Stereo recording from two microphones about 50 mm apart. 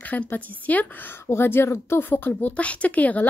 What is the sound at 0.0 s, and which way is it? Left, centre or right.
Speech, left.